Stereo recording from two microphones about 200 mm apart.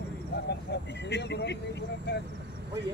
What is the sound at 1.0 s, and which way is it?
Speech, 60° left (ahead or behind).